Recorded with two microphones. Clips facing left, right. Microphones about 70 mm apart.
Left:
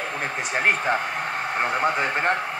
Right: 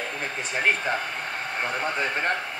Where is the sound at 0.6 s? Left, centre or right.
Left.